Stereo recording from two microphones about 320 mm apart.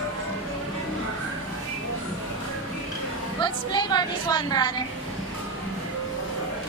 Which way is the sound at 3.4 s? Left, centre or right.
Centre.